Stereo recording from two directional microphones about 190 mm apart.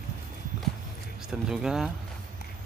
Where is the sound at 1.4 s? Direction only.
5° right (ahead or behind).